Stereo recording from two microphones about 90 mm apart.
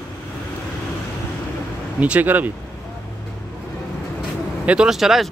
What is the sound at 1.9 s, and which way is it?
Speech, 15° right (ahead or behind).